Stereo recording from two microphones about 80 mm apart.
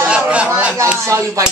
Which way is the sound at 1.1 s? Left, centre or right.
Right.